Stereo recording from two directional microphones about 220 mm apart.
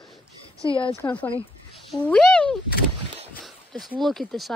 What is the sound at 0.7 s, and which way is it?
Speech, 25° left (ahead or behind).